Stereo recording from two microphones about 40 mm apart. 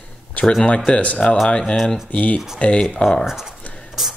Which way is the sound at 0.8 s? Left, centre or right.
Left.